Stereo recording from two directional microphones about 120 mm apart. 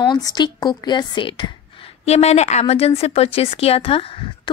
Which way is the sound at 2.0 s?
65° left (ahead or behind).